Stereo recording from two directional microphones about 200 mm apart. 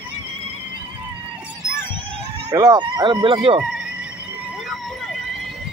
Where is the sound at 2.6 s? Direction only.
20° right (ahead or behind).